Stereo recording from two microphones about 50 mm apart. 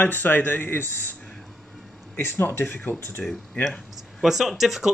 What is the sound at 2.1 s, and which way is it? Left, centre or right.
Speech, left.